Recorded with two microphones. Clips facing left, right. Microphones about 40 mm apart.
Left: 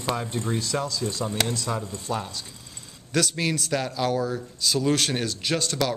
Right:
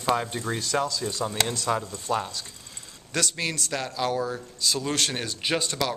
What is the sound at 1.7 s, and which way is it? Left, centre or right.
Speech, right.